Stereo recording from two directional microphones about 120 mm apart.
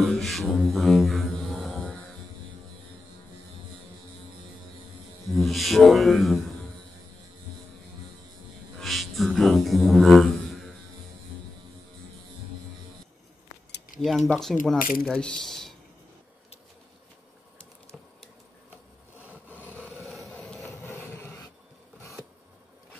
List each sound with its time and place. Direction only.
0.0 s music: centre (ahead or behind)
5.3 s speech: centre (ahead or behind)
8.7 s music: centre (ahead or behind)
13.9 s speech: centre (ahead or behind)
19.6 s filing: 15° left (ahead or behind)
20.0 s vehicle: centre (ahead or behind)
20.6 s vehicle: 20° left (ahead or behind)